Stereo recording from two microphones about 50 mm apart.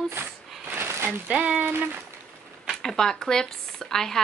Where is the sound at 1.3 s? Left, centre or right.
Right.